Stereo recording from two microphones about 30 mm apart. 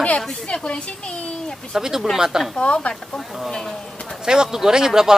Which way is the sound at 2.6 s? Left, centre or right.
Left.